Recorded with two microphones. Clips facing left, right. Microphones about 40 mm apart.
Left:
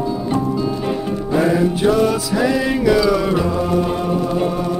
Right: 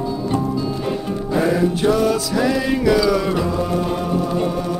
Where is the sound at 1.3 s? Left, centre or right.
Centre.